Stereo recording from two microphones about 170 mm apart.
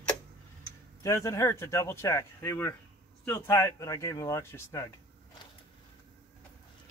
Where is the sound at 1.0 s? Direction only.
20° left (ahead or behind).